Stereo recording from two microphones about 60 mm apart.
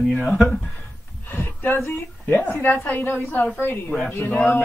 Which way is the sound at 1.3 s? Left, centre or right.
Left.